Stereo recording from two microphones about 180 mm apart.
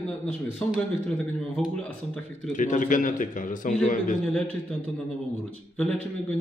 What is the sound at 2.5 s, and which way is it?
A man's voice, 45° left (ahead or behind).